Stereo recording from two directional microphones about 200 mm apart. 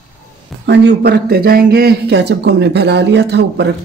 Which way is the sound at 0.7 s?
55° right (ahead or behind).